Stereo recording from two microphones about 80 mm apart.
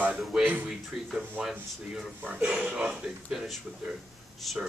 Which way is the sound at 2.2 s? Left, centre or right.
Centre.